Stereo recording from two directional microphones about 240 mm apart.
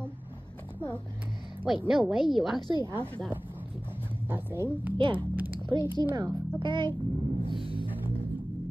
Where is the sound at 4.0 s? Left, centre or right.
Centre.